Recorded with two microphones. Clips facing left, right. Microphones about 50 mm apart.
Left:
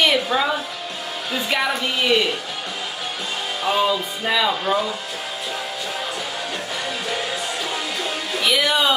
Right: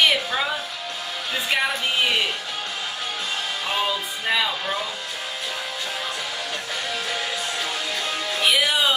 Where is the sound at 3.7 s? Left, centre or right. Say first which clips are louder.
Left 6 dB; centre.